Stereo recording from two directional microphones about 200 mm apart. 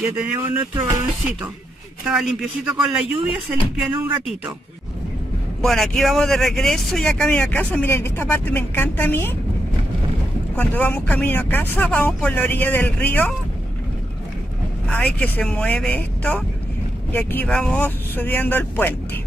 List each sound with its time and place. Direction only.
0.6 s music: 15° right (ahead or behind)
2.0 s speech: 5° right (ahead or behind)
5.6 s speech: centre (ahead or behind)
10.5 s speech: 5° left (ahead or behind)
14.9 s speech: 5° left (ahead or behind)